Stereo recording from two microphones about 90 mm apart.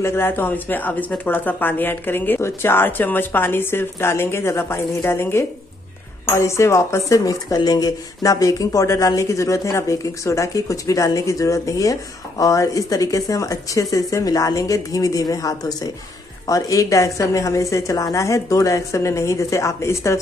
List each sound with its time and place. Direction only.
0.0 s speech: 25° left (ahead or behind)